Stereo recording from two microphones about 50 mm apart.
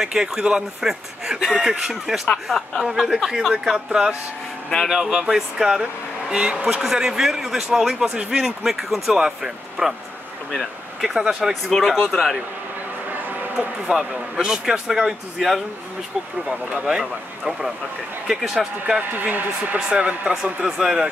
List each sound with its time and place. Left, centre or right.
0.0 s speech: centre
4.8 s speech: centre
10.5 s a sound: centre
11.1 s speech: centre
11.7 s speech: centre
13.3 s a sound: right
13.9 s speech: centre
19.1 s a man's voice: right
19.9 s speech: right
20.6 s speech: centre